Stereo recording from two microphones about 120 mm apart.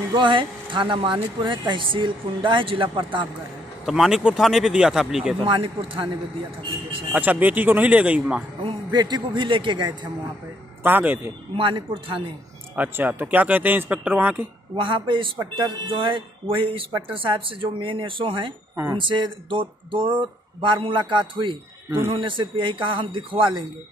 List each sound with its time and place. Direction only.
0.1 s speech: 45° right (ahead or behind)
3.8 s speech: 5° right (ahead or behind)
5.4 s speech: 50° right (ahead or behind)
7.1 s speech: 15° right (ahead or behind)
8.6 s a man's voice: 35° right (ahead or behind)
10.8 s speech: 15° right (ahead or behind)
11.5 s speech: 45° right (ahead or behind)
12.7 s speech: 15° right (ahead or behind)
14.8 s speech: 45° right (ahead or behind)